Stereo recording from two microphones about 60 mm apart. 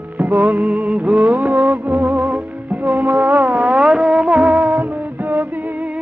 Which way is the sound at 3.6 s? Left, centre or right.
Centre.